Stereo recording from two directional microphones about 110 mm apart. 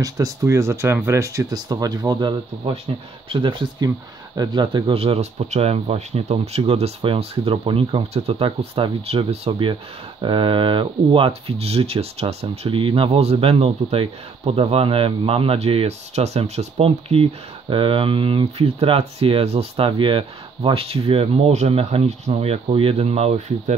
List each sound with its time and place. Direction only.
0.0 s speech: 30° right (ahead or behind)
4.9 s speech: 65° right (ahead or behind)